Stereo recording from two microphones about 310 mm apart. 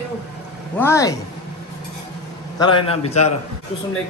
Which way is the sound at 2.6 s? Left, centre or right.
Centre.